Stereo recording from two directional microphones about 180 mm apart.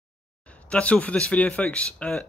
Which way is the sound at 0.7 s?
5° left (ahead or behind).